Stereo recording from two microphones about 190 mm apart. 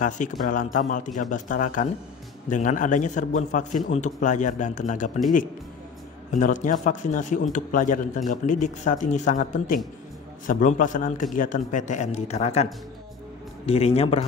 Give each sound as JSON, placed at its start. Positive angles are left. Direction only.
{"t": 0.0, "sound": "a man's voice", "side_deg": 45}
{"t": 6.3, "sound": "a man's voice", "side_deg": 40}
{"t": 13.7, "sound": "a man's voice", "side_deg": 30}